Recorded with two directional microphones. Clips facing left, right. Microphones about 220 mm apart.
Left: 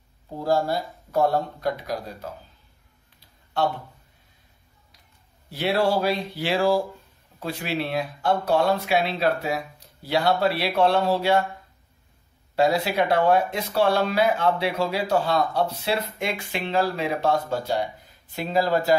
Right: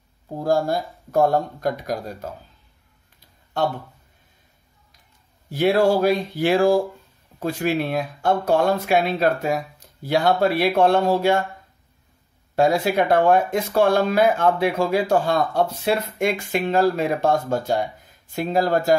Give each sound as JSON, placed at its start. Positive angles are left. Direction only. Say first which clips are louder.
{"t": 0.4, "sound": "speech", "louder": "right 2 dB", "side_deg": -50}
{"t": 5.5, "sound": "speech", "louder": "right 5 dB", "side_deg": -50}
{"t": 12.5, "sound": "speech", "louder": "right 3 dB", "side_deg": -50}